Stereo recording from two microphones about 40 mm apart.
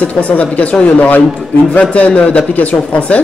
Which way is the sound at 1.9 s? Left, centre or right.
Left.